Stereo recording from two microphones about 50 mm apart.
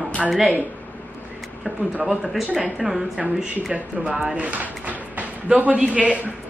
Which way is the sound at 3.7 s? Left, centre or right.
Right.